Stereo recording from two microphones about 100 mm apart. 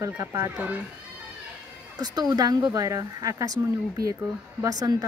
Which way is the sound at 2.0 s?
40° right (ahead or behind).